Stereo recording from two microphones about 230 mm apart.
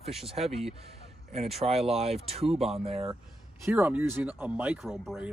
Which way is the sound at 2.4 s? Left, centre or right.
Centre.